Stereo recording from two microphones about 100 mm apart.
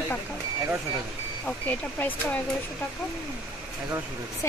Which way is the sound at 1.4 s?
15° left (ahead or behind).